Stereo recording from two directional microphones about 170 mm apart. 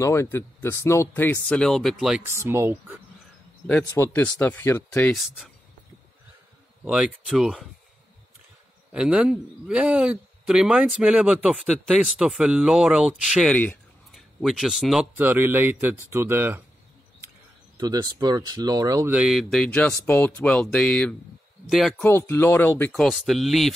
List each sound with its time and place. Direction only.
0.0 s speech: 15° left (ahead or behind); by 2.2 s centre (ahead or behind)
2.3 s speech: 15° right (ahead or behind)
3.9 s speech: 10° left (ahead or behind)
5.1 s speech: centre (ahead or behind)
6.8 s speech: 5° right (ahead or behind)
8.9 s speech: 5° right (ahead or behind)
15.1 s speech: 10° right (ahead or behind)
17.7 s speech: 25° right (ahead or behind)
19.1 s speech: 5° right (ahead or behind)
22.0 s speech: 10° left (ahead or behind)